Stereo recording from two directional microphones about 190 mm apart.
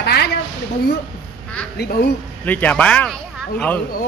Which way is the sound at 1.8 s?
55° left (ahead or behind).